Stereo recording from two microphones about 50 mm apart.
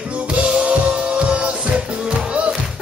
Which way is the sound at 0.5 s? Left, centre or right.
Right.